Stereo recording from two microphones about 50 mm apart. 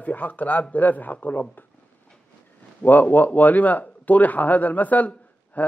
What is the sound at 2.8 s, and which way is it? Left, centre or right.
A man's voice, left.